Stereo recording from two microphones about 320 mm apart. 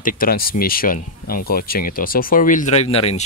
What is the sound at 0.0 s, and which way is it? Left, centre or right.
Speech, left.